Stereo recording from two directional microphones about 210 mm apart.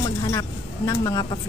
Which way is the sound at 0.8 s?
15° left (ahead or behind).